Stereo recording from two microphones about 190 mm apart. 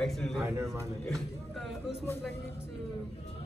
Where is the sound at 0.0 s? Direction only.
Centre (ahead or behind).